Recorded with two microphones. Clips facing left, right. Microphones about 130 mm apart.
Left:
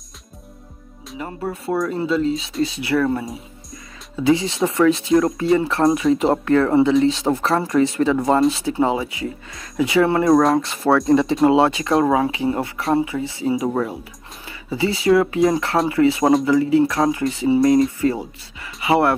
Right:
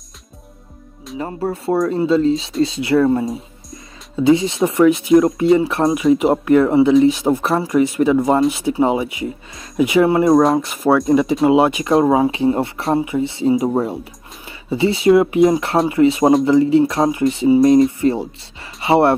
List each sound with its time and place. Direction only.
1.1 s speech: 30° right (ahead or behind); by 11.0 s 15° right (ahead or behind)
11.0 s speech: 5° right (ahead or behind)
11.5 s speech: 15° right (ahead or behind)